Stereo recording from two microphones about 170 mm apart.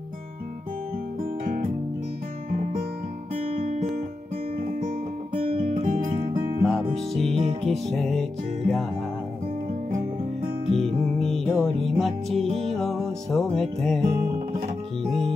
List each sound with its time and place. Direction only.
1.4 s music: 60° right (ahead or behind)
3.3 s guitar: 55° right (ahead or behind)
4.6 s music: 50° right (ahead or behind)
6.6 s music: centre (ahead or behind)
9.8 s music: 55° right (ahead or behind)
10.7 s music: 35° right (ahead or behind)
11.1 s music: centre (ahead or behind)
12.4 s music: 35° right (ahead or behind)
12.7 s music: centre (ahead or behind)
15.0 s music: centre (ahead or behind)